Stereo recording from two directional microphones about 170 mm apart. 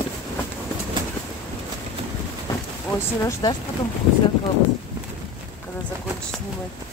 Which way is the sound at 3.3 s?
25° left (ahead or behind).